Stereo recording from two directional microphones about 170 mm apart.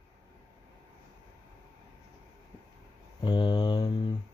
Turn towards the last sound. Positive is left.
turn(degrees=25)  # may be behind; listen again after turning